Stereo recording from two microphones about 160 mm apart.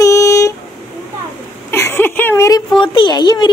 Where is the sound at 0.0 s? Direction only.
20° left (ahead or behind).